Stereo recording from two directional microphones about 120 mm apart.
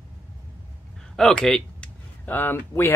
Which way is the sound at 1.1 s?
5° left (ahead or behind).